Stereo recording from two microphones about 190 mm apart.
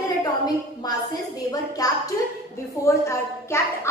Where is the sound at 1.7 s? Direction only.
20° left (ahead or behind).